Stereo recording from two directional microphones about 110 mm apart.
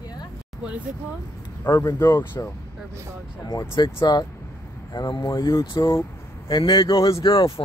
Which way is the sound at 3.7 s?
45° left (ahead or behind).